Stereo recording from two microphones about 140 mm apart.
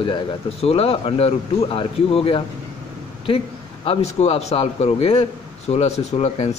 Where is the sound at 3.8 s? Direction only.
50° left (ahead or behind).